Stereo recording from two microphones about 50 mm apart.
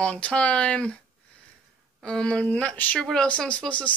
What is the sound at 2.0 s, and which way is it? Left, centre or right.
Speech, centre.